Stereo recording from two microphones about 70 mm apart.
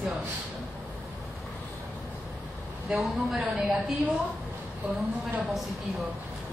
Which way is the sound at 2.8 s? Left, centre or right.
Centre.